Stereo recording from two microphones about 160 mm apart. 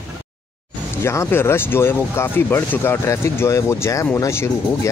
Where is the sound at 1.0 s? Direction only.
15° left (ahead or behind).